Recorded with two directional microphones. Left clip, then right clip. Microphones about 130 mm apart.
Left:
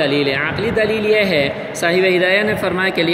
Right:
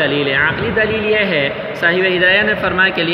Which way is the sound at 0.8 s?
35° right (ahead or behind).